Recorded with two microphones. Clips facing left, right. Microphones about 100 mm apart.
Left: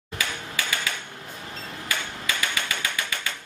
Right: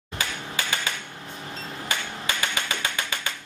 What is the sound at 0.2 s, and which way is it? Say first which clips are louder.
Typewriter: even; 30° right (ahead or behind).